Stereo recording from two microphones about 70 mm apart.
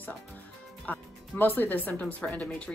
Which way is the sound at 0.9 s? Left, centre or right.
Left.